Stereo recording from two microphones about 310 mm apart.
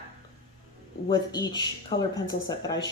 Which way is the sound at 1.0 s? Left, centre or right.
Centre.